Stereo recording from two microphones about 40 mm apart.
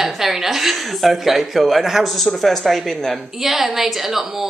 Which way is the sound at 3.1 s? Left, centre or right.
Centre.